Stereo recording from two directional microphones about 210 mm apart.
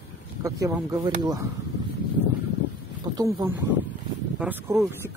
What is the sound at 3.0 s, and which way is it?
Wild animals, 20° right (ahead or behind).